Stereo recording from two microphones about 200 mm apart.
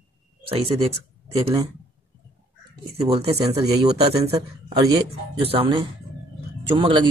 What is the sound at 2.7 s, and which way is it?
A man's voice, 30° right (ahead or behind).